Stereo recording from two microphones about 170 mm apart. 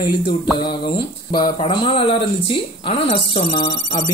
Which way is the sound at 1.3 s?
25° left (ahead or behind).